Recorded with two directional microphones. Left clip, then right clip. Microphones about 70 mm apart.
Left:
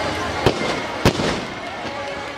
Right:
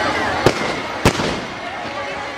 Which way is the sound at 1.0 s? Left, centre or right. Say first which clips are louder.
Right 2 dB; right.